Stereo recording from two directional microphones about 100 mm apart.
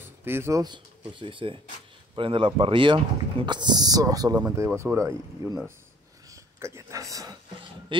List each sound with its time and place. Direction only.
0.2 s speech: 25° right (ahead or behind)
0.7 s speech: 55° right (ahead or behind); by 4.4 s 40° right (ahead or behind)
4.6 s speech: 30° right (ahead or behind)
6.3 s a sound: 30° right (ahead or behind)
7.9 s speech: 55° right (ahead or behind)